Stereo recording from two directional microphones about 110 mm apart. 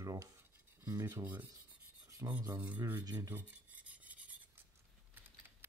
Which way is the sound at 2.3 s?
15° right (ahead or behind).